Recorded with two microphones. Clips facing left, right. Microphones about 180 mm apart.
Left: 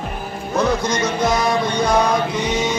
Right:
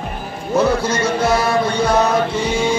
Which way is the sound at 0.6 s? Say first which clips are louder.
Right 3 dB; 10° right (ahead or behind).